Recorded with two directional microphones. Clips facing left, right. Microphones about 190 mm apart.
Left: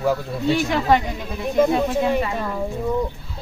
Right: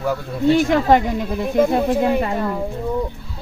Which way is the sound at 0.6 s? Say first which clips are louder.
Right 3 dB; 50° right (ahead or behind).